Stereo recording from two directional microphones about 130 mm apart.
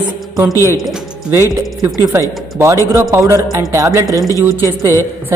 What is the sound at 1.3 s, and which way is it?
A man's voice, 20° right (ahead or behind).